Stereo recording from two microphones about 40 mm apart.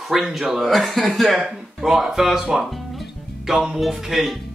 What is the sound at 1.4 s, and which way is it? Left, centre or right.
Speech, centre.